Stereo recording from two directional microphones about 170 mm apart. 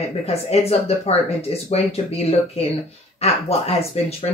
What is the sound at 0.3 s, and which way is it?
Speech, 35° left (ahead or behind).